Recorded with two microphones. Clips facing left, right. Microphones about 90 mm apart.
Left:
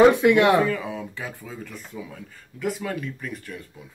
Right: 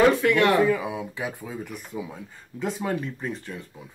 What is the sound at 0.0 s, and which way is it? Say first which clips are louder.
Speech: left 3 dB; 20° left (ahead or behind).